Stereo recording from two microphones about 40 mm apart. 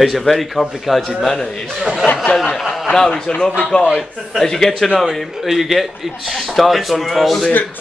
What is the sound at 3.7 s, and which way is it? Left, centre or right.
Speech, left.